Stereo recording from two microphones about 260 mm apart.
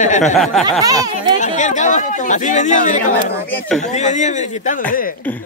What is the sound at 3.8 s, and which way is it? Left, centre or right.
Speech, left.